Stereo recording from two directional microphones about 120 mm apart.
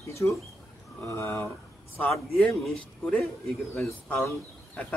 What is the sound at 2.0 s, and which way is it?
Speech, 5° left (ahead or behind).